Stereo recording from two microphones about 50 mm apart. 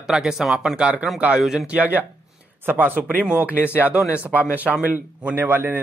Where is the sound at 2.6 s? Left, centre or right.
Right.